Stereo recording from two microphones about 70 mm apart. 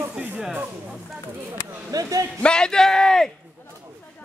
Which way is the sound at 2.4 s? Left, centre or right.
Centre.